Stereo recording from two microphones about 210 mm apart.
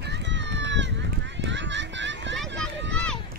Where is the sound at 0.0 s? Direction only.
55° right (ahead or behind).